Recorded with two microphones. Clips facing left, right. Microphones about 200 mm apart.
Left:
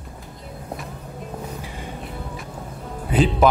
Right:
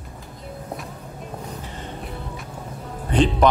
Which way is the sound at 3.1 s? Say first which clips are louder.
Even; 5° left (ahead or behind).